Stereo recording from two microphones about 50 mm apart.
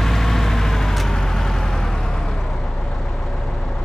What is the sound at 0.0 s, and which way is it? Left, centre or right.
Vehicle, centre.